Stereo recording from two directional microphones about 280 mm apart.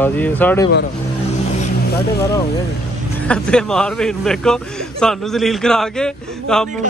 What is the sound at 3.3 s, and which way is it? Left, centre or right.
A man's voice, centre.